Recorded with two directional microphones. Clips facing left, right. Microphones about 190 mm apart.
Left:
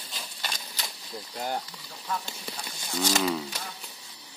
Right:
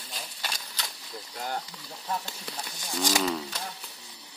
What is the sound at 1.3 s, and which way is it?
Speech, 20° left (ahead or behind).